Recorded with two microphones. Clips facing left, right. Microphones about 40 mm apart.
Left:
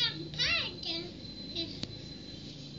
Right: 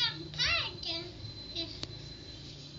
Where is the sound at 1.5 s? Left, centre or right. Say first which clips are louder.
Left 1 dB; left.